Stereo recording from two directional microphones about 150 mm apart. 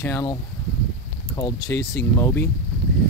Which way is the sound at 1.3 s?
25° left (ahead or behind).